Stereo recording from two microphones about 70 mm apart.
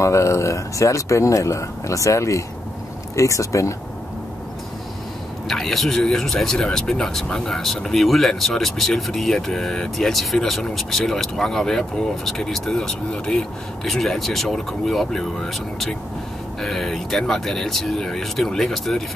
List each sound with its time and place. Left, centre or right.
0.0 s speech: left
5.5 s speech: centre